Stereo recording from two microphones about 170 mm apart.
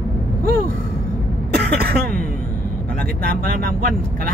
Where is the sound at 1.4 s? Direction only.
70° right (ahead or behind).